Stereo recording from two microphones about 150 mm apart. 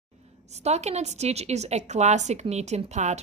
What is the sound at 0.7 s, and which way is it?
Speech, 45° right (ahead or behind).